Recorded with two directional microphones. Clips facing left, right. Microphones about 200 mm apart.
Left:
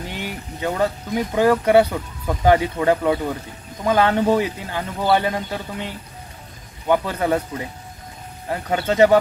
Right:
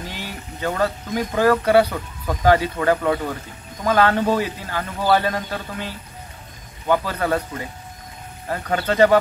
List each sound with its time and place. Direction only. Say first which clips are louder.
0.2 s speech: left 1 dB; 15° left (ahead or behind)
6.9 s speech: left 1 dB; 15° left (ahead or behind)
8.7 s speech: left 1 dB; 25° left (ahead or behind)